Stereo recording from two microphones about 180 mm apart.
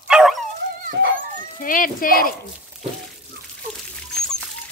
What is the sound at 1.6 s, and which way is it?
Speech, 50° left (ahead or behind).